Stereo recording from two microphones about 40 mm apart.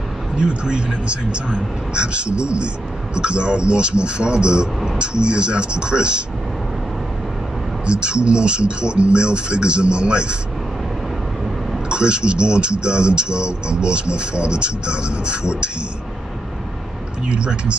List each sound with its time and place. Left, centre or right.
0.4 s speech: right
7.8 s speech: right
11.9 s speech: right
17.3 s speech: right